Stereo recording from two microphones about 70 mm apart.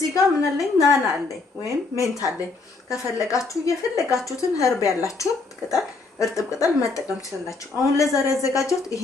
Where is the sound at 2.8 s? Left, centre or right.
Left.